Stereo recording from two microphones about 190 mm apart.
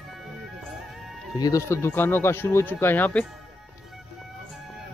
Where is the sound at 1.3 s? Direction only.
20° left (ahead or behind).